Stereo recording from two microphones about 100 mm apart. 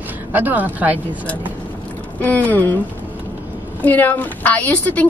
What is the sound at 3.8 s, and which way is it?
Speech, 15° left (ahead or behind).